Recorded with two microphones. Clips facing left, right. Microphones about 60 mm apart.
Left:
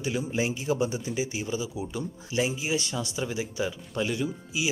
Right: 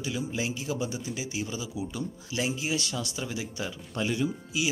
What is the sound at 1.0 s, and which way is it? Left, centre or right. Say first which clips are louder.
Speech: left 3 dB; centre.